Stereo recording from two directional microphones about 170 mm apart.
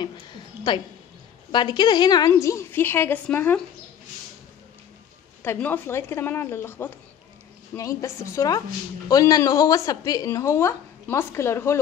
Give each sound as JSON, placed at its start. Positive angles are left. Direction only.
{"t": 0.0, "sound": "a sound", "side_deg": 25}
{"t": 1.5, "sound": "a woman's voice", "side_deg": 25}
{"t": 5.4, "sound": "a woman's voice", "side_deg": 10}